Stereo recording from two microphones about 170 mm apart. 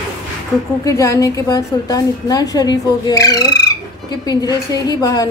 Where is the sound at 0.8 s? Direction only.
20° left (ahead or behind).